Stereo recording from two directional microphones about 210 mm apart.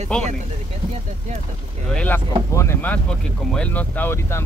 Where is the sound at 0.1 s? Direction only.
5° left (ahead or behind).